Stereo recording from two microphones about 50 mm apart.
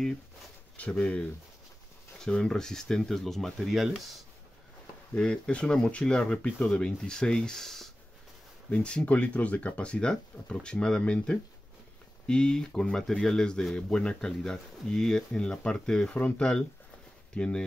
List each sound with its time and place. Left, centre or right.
0.7 s speech: left; by 4.1 s centre
5.1 s speech: centre
8.6 s speech: left